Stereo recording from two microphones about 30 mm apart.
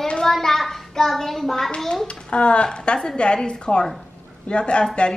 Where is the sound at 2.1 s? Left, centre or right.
Left.